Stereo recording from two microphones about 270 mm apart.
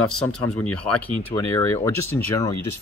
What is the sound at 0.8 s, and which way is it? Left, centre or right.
Speech, centre.